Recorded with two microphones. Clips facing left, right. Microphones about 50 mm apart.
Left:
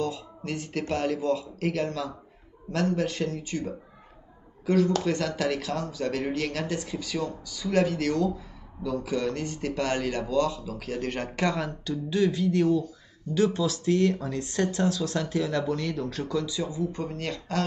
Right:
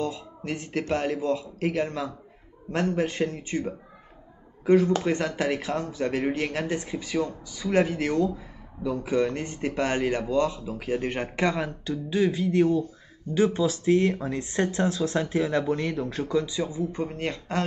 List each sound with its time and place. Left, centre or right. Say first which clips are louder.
0.0 s speech: even; right